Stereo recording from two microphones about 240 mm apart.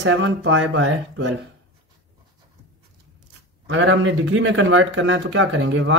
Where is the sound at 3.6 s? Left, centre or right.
Right.